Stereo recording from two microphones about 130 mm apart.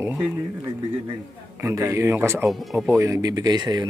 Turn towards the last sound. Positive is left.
turn(degrees=-30)  # may be behind; listen again after turning